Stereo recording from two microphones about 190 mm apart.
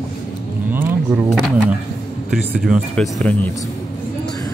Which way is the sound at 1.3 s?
Centre (ahead or behind).